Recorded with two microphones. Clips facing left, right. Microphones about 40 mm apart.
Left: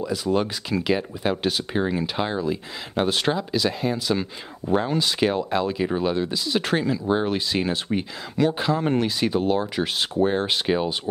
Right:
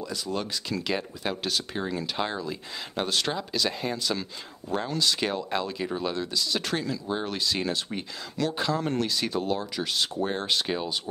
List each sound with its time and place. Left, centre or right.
0.0 s speech: centre
0.8 s speech: centre
3.3 s speech: centre; by 11.0 s left